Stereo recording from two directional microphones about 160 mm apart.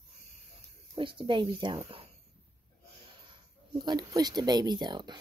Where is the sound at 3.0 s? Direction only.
30° right (ahead or behind).